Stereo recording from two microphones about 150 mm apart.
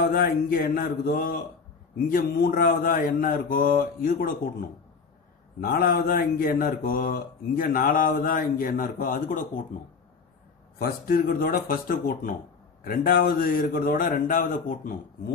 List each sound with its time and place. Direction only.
0.0 s speech: 85° left
2.4 s speech: 75° left (ahead or behind)
5.6 s speech: 75° left (ahead or behind)
10.8 s speech: 70° left (ahead or behind)